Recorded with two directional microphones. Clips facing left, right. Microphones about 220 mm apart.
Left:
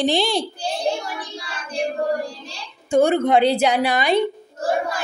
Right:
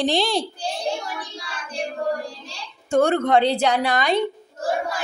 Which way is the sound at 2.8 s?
5° left (ahead or behind).